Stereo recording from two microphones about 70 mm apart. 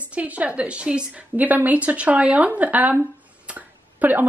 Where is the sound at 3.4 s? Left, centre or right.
Right.